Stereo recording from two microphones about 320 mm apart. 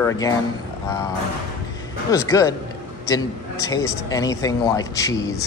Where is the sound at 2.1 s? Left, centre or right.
Centre.